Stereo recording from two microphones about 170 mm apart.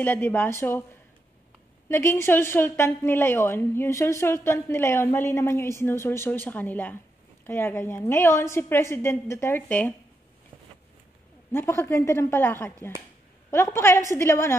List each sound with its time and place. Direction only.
0.0 s a woman's voice: 10° left (ahead or behind)
1.9 s a woman's voice: 15° left (ahead or behind)
11.5 s a woman's voice: 15° left (ahead or behind)